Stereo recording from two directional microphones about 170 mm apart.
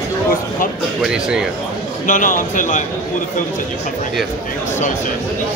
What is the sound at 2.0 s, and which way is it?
Speech, 50° left (ahead or behind).